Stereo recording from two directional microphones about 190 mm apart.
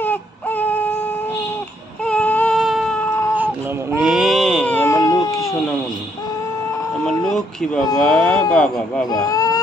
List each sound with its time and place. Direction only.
0.0 s baby cry: 10° left (ahead or behind)
2.0 s a sound: 5° left (ahead or behind)
3.3 s baby cry: 10° right (ahead or behind)
4.7 s baby cry: 15° left (ahead or behind)
7.1 s a sound: 5° left (ahead or behind)
8.0 s speech: 5° left (ahead or behind)
9.1 s speech: 20° left (ahead or behind)